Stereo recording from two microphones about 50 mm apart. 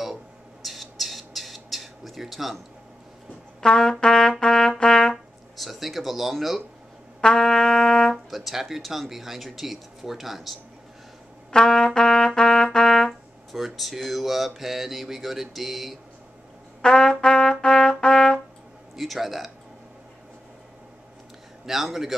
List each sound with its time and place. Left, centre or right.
0.7 s squawk: centre
3.6 s trumpet: centre
5.1 s speech: centre
7.2 s trumpet: centre
8.3 s speech: centre
11.5 s trumpet: centre
13.5 s speech: centre
16.8 s trumpet: centre
18.9 s speech: centre
21.6 s a man's voice: centre